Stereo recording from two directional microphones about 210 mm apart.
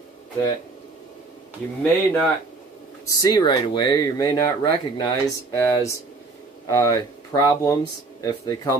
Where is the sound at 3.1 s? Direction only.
15° left (ahead or behind).